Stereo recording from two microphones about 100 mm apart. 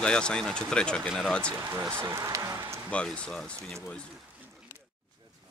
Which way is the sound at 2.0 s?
30° right (ahead or behind).